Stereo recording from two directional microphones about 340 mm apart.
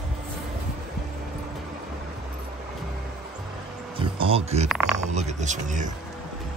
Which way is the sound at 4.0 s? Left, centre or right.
Centre.